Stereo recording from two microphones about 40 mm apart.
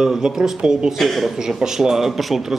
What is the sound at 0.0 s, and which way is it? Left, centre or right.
Speech, centre.